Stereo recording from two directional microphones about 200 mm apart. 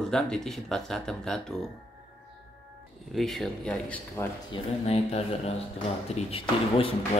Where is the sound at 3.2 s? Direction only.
Centre (ahead or behind).